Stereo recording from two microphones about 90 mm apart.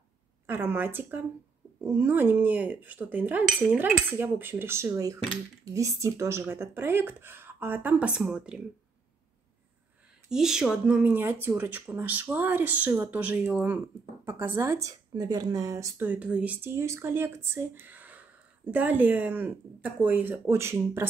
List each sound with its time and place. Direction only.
0.5 s speech: 25° right (ahead or behind)
10.3 s speech: 5° right (ahead or behind)
11.0 s speech: 20° right (ahead or behind); by 15.9 s 35° right (ahead or behind)
16.0 s speech: 15° right (ahead or behind)
16.6 s speech: 30° right (ahead or behind)